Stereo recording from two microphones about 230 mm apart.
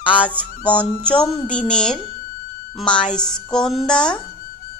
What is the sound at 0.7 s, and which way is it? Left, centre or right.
Speech, centre.